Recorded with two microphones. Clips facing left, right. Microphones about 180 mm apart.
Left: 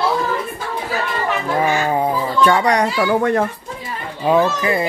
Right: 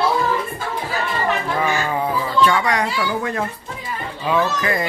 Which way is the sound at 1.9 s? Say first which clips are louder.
Left 3 dB; 35° left (ahead or behind).